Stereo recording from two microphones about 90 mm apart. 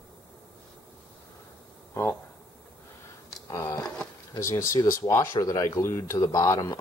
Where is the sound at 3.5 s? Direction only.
40° left (ahead or behind).